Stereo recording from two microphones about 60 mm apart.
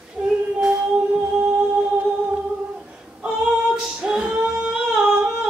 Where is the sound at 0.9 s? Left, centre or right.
Centre.